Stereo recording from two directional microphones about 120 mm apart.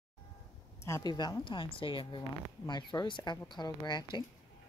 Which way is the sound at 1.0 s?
35° left (ahead or behind).